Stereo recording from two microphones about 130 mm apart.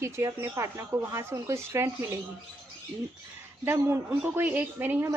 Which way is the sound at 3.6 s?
15° right (ahead or behind).